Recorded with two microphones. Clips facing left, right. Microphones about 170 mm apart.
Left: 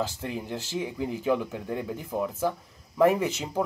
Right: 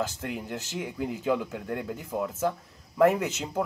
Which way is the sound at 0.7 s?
5° right (ahead or behind).